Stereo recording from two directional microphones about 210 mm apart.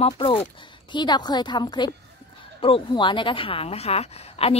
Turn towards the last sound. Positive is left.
turn(degrees=30)  # may be behind; listen again after turning